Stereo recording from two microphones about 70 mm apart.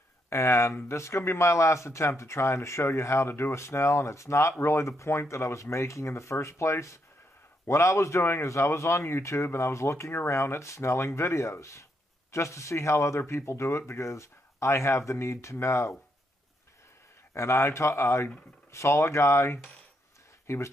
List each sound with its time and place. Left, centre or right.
0.3 s speech: left
17.3 s speech: left